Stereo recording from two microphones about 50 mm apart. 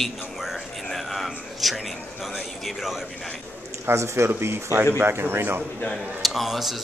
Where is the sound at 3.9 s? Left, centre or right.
Right.